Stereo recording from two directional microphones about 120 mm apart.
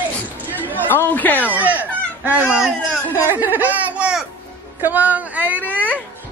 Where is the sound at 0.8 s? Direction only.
15° left (ahead or behind).